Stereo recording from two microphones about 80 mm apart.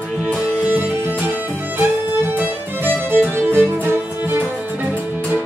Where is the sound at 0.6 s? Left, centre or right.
Right.